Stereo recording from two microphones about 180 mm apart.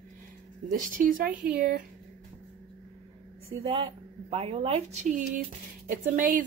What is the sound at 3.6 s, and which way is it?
A woman's voice, 30° right (ahead or behind).